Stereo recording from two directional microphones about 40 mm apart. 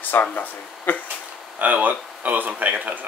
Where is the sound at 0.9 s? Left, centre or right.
Left.